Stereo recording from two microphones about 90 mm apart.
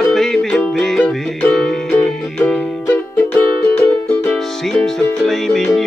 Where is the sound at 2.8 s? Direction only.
20° left (ahead or behind).